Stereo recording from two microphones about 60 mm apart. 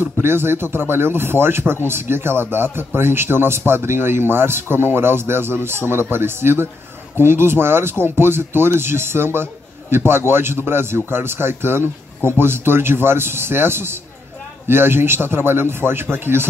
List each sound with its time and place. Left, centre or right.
0.0 s speech: right